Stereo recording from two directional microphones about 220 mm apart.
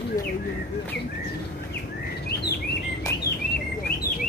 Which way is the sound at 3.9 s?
45° left (ahead or behind).